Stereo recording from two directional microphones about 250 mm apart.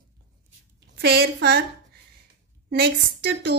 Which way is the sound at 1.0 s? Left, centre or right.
Right.